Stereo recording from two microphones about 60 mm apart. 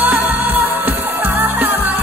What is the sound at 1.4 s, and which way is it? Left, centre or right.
Music, right.